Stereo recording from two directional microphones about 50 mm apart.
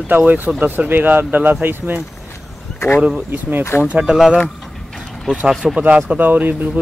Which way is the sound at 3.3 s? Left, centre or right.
Right.